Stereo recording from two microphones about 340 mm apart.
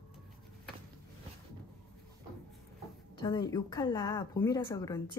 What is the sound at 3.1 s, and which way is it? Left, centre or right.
A woman's voice, centre.